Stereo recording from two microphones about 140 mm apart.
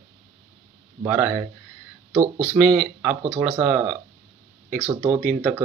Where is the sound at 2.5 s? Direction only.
5° right (ahead or behind).